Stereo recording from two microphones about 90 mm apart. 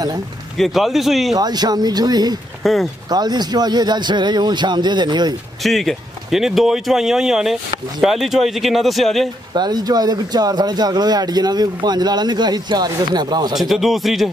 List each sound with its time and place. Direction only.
0.6 s speech: centre (ahead or behind)
1.3 s speech: 50° right (ahead or behind)
2.6 s speech: centre (ahead or behind)
3.1 s speech: 50° right (ahead or behind)
5.6 s speech: centre (ahead or behind)
9.5 s speech: 50° right (ahead or behind)
13.6 s speech: centre (ahead or behind)